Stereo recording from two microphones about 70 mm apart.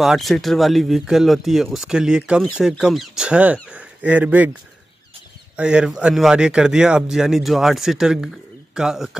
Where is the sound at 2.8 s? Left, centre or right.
Centre.